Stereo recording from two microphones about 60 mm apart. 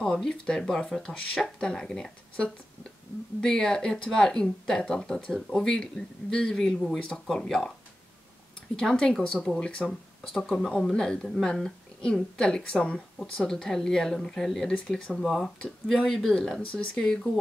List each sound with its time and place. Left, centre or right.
0.0 s speech: centre
8.7 s speech: centre
9.8 s speech: centre
14.7 s speech: left
15.2 s speech: centre